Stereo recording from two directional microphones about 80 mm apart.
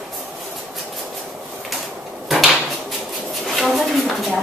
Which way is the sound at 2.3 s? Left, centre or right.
Centre.